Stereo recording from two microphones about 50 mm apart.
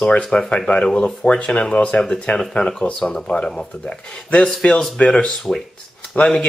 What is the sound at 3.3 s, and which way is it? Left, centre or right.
Speech, left.